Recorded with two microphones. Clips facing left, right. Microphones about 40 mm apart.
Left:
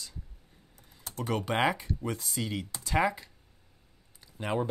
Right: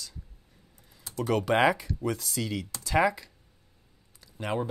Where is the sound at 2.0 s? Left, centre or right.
Centre.